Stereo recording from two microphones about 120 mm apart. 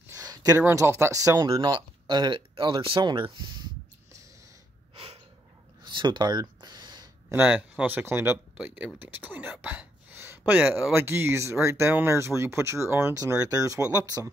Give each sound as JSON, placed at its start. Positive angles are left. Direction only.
{"t": 0.1, "sound": "speech", "side_deg": -30}
{"t": 1.5, "sound": "speech", "side_deg": -40}
{"t": 4.9, "sound": "snort", "side_deg": -50}
{"t": 5.9, "sound": "a sound", "side_deg": -40}
{"t": 7.3, "sound": "speech", "side_deg": -10}